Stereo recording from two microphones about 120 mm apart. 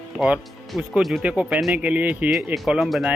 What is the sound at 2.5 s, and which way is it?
Speech, 5° right (ahead or behind).